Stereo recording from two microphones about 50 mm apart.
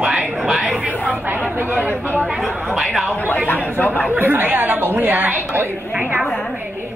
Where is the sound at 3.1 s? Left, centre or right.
Left.